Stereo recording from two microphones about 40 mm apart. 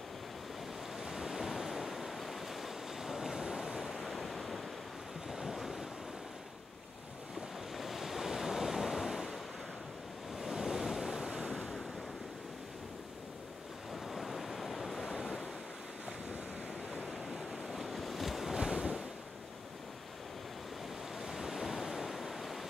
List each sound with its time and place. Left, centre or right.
0.9 s waves: centre
3.9 s waves: centre
7.7 s waves: centre
10.4 s waves: centre
14.0 s waves: centre
16.9 s waves: centre
18.6 s waves: centre
21.2 s waves: centre